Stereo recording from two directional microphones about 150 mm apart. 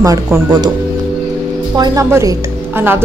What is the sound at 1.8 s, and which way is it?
Speech, 20° right (ahead or behind).